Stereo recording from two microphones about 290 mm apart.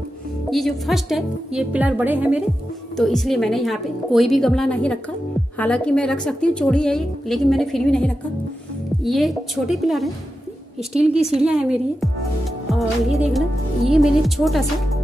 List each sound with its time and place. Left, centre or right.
0.5 s a woman's voice: centre
11.4 s a woman's voice: centre